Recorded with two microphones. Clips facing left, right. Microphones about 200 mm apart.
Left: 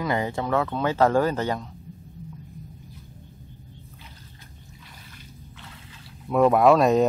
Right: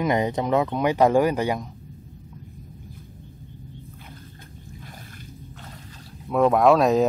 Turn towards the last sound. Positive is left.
turn(degrees=0)  # may be behind; listen again after turning